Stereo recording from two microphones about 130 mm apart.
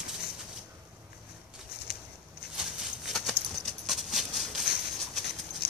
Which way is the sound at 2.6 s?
Centre (ahead or behind).